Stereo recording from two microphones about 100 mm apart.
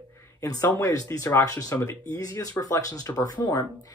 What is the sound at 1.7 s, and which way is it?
Speech, 20° left (ahead or behind).